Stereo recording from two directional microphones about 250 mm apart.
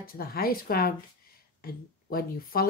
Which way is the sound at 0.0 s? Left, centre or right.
Left.